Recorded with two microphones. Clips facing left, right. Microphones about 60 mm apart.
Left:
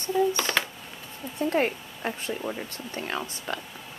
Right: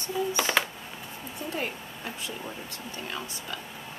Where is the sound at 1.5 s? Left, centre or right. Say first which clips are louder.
Left 8 dB; left.